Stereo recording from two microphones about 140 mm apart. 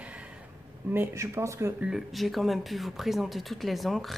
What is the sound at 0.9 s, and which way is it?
Speech, 15° right (ahead or behind).